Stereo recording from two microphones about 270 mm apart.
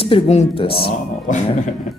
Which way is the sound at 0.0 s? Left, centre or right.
Left.